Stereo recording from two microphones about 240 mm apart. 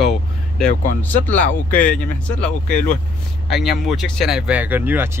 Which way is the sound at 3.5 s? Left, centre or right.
Centre.